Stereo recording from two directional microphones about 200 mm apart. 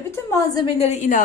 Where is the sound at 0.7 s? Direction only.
35° left (ahead or behind).